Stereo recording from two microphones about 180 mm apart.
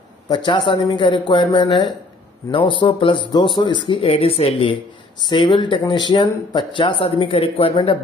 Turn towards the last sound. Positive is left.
turn(degrees=30)  # may be behind; listen again after turning